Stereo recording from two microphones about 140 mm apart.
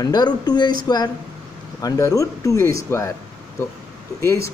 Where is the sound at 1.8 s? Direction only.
25° left (ahead or behind).